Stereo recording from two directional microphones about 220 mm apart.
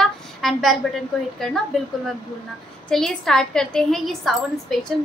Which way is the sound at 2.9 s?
Centre (ahead or behind).